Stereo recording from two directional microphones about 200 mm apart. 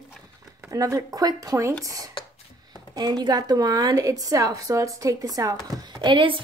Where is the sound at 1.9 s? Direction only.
15° right (ahead or behind).